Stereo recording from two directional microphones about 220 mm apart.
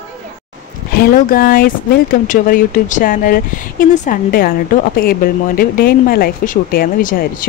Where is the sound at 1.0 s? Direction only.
40° left (ahead or behind).